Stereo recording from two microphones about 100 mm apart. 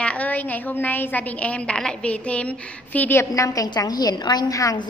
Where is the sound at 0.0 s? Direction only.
15° left (ahead or behind).